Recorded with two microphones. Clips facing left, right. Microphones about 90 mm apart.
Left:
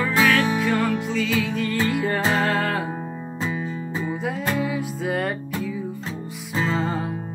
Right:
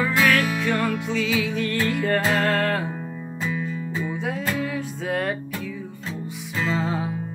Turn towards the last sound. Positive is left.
turn(degrees=0)  # may be behind; listen again after turning